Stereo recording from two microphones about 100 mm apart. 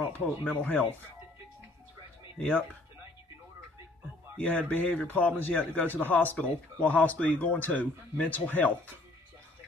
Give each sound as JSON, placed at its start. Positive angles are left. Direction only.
{"t": 0.5, "sound": "a man's voice", "side_deg": 20}
{"t": 2.4, "sound": "a man's voice", "side_deg": 20}
{"t": 4.4, "sound": "a man's voice", "side_deg": 15}